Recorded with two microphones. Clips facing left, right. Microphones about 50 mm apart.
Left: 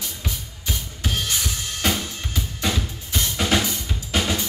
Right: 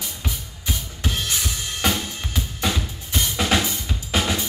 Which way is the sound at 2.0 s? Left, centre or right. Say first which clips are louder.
Right 1 dB; centre.